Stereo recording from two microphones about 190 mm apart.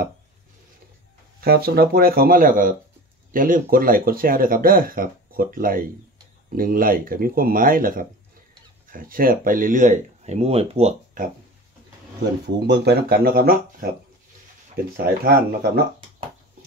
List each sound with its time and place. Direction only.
1.4 s speech: 55° right (ahead or behind); by 11.2 s 35° right (ahead or behind)
12.5 s speech: 60° right (ahead or behind)
15.0 s speech: 50° right (ahead or behind)